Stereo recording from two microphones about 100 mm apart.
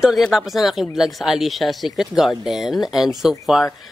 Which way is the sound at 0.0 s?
Centre (ahead or behind).